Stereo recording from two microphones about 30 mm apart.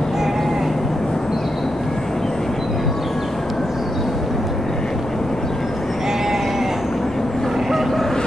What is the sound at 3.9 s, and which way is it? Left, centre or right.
Vehicle, centre.